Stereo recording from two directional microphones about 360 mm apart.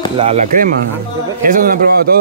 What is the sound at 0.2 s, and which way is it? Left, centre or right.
A man's voice, centre.